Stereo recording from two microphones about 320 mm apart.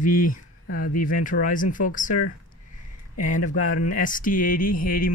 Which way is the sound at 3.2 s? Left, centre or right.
Left.